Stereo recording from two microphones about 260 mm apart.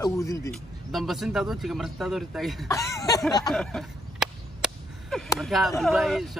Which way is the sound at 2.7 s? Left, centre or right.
Centre.